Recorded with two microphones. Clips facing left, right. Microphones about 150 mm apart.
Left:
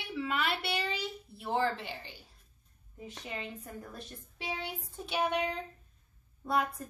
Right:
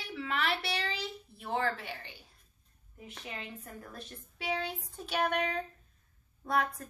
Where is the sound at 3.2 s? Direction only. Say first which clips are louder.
Left 2 dB; 25° left (ahead or behind).